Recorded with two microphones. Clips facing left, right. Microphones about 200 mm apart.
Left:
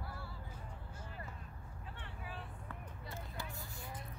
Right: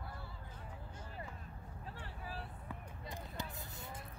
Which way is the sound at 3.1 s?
20° right (ahead or behind).